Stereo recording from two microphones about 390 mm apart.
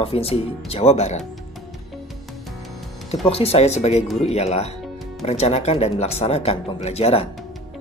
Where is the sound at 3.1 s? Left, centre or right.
Centre.